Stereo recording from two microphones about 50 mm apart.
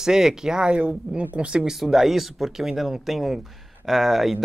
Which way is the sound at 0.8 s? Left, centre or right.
Right.